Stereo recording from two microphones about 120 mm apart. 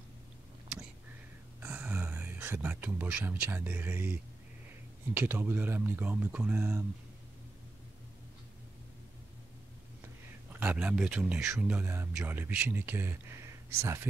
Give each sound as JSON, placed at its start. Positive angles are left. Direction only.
{"t": 1.6, "sound": "speech", "side_deg": -15}
{"t": 5.1, "sound": "speech", "side_deg": -15}
{"t": 10.0, "sound": "a sound", "side_deg": -15}
{"t": 11.6, "sound": "speech", "side_deg": -15}
{"t": 12.1, "sound": "speech", "side_deg": -5}